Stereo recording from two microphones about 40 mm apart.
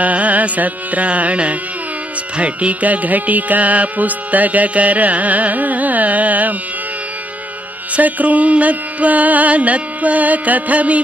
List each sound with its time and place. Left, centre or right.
0.0 s music: right
7.9 s music: right